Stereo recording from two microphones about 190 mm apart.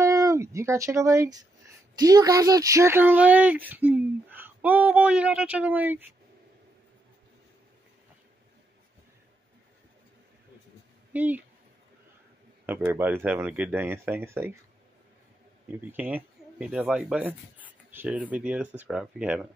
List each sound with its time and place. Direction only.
0.0 s speech: 15° right (ahead or behind)
11.1 s speech: 10° right (ahead or behind)
12.6 s speech: 10° right (ahead or behind)
15.7 s speech: 10° right (ahead or behind)